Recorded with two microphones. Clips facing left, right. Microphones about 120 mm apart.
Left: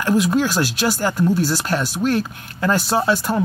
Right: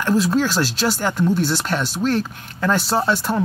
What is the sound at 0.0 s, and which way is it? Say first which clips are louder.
Speech: left 1 dB; 15° left (ahead or behind).